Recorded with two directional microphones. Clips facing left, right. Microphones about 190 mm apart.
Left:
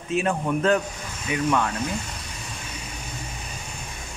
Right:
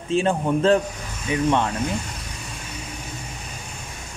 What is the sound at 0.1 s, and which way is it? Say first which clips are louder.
Speech: right 3 dB; 30° right (ahead or behind).